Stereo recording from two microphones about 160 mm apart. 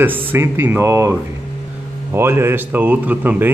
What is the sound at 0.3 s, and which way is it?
Speech, 10° right (ahead or behind).